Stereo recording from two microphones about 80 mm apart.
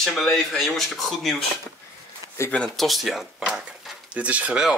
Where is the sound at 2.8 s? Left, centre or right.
Centre.